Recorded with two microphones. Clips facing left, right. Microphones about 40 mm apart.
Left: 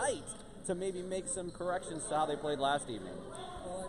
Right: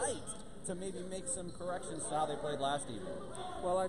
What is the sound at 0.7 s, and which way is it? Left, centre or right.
Speech, left.